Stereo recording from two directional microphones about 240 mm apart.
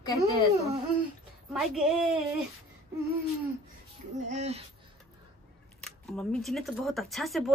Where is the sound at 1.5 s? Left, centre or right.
Centre.